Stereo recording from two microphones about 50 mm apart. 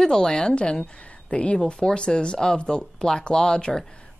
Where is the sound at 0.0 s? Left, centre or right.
Centre.